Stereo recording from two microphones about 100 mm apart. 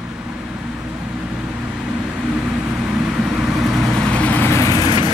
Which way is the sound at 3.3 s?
15° right (ahead or behind).